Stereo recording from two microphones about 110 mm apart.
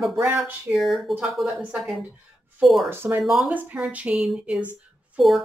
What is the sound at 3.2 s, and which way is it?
A woman's voice, centre (ahead or behind).